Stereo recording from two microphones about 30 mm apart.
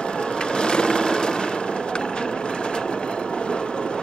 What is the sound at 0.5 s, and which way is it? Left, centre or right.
Sewing machine, left.